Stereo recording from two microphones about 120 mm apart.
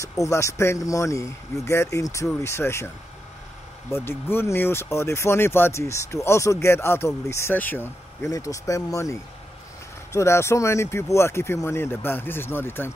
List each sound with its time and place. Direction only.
0.0 s speech: 25° left (ahead or behind)
3.9 s speech: 20° left (ahead or behind)